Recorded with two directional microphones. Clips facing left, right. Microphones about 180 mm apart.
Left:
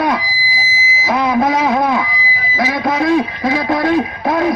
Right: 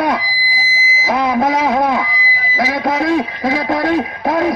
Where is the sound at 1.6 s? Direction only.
40° right (ahead or behind).